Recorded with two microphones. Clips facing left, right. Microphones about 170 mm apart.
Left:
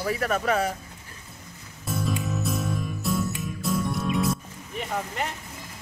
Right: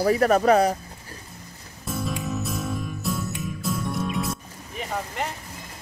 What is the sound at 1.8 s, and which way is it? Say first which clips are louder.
Music: even; centre (ahead or behind).